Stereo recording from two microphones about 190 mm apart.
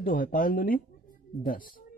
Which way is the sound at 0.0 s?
45° left (ahead or behind).